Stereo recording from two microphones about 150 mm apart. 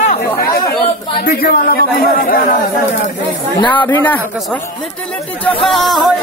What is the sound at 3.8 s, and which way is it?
Speech, 10° left (ahead or behind).